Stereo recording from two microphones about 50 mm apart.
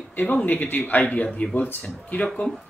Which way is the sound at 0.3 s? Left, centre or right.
Left.